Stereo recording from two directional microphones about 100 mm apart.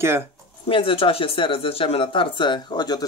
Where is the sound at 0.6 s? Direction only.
65° left (ahead or behind); by 3.1 s 45° left (ahead or behind).